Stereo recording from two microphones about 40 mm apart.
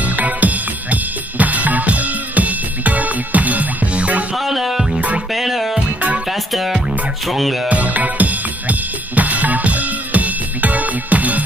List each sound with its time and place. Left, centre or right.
0.0 s music: right
4.5 s music: centre
7.2 s music: centre
7.6 s drum kit: right